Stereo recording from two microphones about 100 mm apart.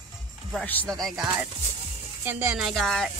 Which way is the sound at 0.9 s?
Centre (ahead or behind).